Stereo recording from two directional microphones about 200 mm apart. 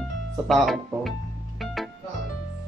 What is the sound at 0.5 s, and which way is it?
Speech, centre (ahead or behind).